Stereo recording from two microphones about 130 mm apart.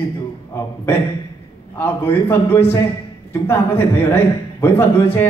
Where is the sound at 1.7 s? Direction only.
15° left (ahead or behind).